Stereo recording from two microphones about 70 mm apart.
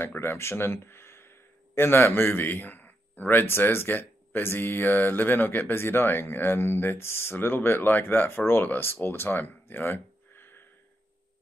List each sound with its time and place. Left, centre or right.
0.0 s speech: left